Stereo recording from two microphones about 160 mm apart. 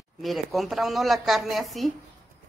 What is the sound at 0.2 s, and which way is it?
Speech, centre (ahead or behind).